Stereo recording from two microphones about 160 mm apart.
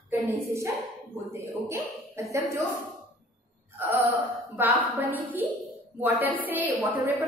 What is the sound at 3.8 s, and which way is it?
A woman's voice, 10° right (ahead or behind).